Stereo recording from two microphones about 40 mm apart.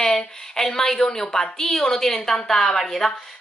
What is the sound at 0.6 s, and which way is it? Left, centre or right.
A woman's voice, centre.